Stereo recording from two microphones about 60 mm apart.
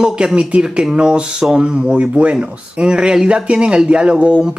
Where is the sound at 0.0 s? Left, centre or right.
Centre.